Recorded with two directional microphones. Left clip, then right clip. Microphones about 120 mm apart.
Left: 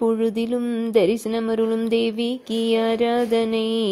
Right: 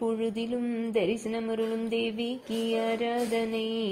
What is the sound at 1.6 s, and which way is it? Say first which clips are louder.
Speech: left 9 dB; 35° left (ahead or behind).